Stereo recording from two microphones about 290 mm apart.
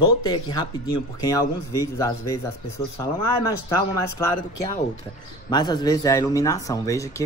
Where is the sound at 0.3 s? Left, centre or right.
Centre.